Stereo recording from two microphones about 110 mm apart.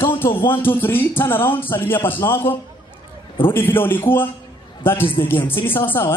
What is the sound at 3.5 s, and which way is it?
A man's voice, 20° left (ahead or behind).